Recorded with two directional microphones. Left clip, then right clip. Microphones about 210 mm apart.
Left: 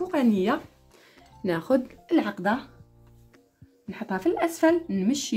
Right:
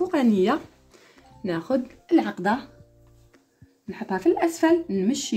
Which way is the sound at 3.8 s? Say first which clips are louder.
Right 4 dB; 10° left (ahead or behind).